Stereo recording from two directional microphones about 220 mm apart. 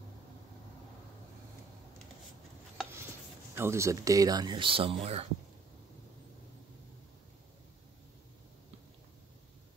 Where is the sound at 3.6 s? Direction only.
10° right (ahead or behind).